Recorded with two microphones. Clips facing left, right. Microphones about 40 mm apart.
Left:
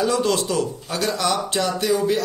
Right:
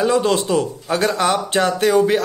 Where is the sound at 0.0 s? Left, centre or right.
Right.